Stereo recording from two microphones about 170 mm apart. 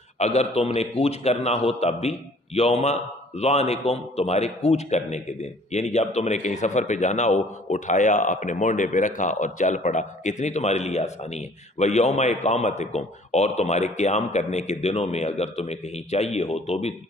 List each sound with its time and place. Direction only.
0.2 s a man's voice: 40° left (ahead or behind)